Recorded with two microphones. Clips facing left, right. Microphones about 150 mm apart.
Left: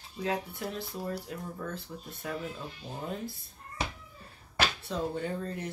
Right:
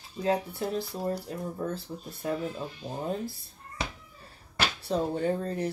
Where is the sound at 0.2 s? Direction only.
30° right (ahead or behind).